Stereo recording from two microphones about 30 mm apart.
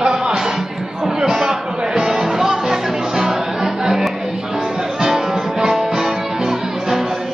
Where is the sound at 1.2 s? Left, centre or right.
Centre.